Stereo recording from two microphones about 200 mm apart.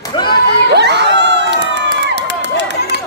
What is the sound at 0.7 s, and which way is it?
Crowd, 60° right (ahead or behind).